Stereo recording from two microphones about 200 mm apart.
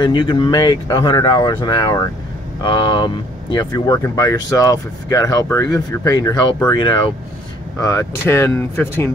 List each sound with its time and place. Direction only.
0.0 s speech: 25° left (ahead or behind)